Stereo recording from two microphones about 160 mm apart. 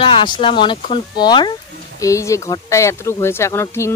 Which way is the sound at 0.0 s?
30° left (ahead or behind).